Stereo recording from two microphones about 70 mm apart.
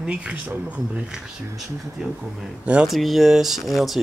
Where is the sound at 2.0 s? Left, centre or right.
Centre.